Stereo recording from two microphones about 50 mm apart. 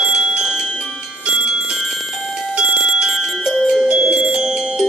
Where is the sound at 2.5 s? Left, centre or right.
Centre.